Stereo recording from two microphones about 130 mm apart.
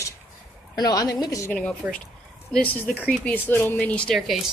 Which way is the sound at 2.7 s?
15° left (ahead or behind).